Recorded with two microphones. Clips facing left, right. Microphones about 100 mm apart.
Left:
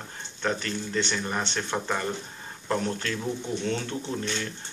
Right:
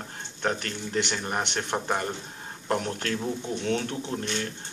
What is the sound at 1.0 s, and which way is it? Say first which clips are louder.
Speech: even; 20° right (ahead or behind).